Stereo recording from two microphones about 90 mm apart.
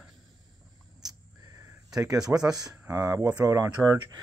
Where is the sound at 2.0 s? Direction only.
40° right (ahead or behind).